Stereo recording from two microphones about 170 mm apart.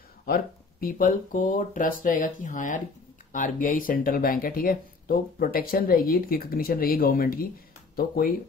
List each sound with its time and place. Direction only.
0.3 s speech: 55° left (ahead or behind)